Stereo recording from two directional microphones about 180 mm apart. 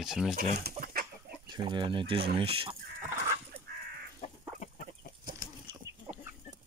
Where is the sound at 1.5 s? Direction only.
25° right (ahead or behind).